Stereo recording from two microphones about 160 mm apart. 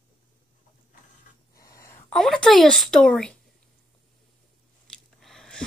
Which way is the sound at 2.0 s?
Centre (ahead or behind).